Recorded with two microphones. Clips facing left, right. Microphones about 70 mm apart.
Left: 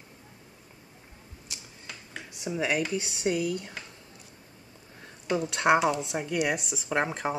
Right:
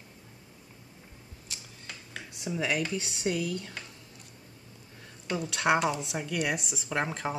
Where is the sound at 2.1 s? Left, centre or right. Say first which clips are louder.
Left 2 dB; centre.